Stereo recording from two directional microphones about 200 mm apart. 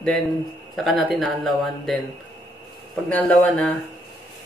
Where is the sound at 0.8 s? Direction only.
Centre (ahead or behind).